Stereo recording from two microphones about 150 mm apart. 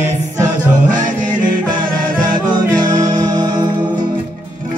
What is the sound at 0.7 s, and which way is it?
Music, 60° right (ahead or behind).